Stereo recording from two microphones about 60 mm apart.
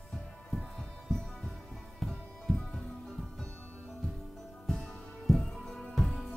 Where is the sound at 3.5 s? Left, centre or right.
Left.